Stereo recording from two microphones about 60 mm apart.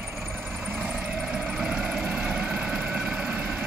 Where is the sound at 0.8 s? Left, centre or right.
Centre.